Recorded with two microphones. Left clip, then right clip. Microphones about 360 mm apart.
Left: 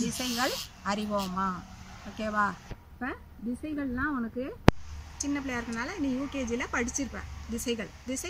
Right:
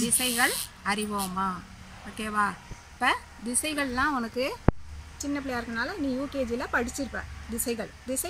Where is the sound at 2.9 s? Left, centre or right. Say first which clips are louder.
Right 12 dB; right.